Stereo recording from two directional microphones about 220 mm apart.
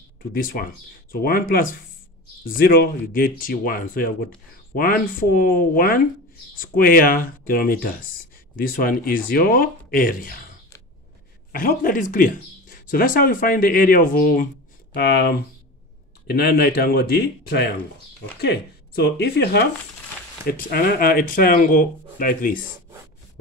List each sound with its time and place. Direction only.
0.3 s speech: 40° left (ahead or behind)
11.5 s speech: 40° left (ahead or behind)
18.9 s speech: 45° left (ahead or behind)